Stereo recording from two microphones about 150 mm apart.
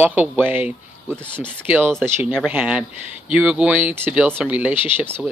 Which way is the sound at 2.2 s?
5° right (ahead or behind).